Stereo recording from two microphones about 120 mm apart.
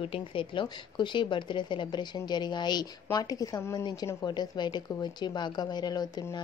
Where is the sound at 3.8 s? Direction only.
35° left (ahead or behind).